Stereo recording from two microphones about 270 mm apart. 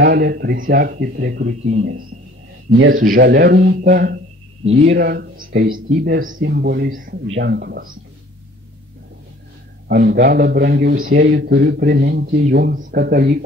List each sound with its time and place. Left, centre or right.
0.0 s a man's voice: right
2.9 s a man's voice: right
9.8 s a man's voice: right